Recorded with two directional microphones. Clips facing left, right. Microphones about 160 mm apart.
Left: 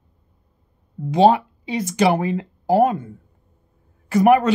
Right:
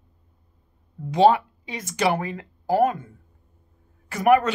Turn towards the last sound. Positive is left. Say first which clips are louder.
# left 4 dB
turn(degrees=30)  # may be behind; listen again after turning